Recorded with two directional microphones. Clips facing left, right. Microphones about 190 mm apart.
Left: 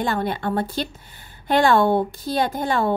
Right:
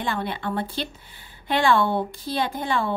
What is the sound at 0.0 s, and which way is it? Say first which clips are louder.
A woman's voice: left 4 dB; 45° left (ahead or behind).